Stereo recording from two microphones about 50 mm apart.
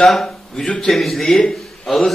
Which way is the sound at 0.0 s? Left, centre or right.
Centre.